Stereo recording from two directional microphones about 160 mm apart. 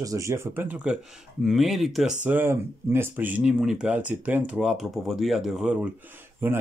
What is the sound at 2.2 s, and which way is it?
Speech, 15° right (ahead or behind).